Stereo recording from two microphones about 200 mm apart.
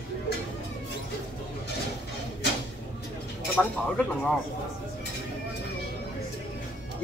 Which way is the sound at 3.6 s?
5° left (ahead or behind).